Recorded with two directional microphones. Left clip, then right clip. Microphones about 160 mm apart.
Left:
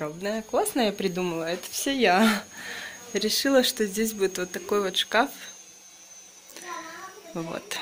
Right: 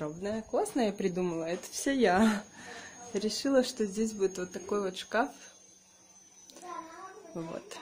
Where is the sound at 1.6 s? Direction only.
20° right (ahead or behind); by 5.3 s 5° right (ahead or behind).